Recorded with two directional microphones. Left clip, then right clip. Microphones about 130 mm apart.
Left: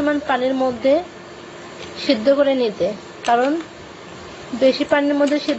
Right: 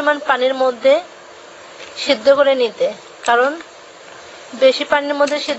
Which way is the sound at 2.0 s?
25° right (ahead or behind).